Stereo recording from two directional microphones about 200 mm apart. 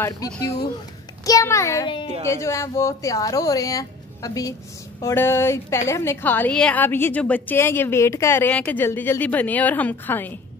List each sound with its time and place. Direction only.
1.2 s a woman's voice: 15° left (ahead or behind)